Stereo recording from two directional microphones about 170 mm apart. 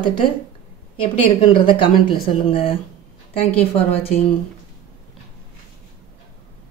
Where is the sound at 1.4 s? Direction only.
30° left (ahead or behind).